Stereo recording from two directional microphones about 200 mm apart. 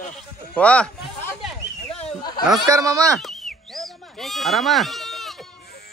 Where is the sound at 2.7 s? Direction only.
15° right (ahead or behind).